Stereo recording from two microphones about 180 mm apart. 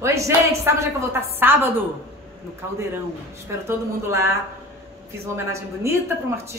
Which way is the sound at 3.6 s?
15° right (ahead or behind).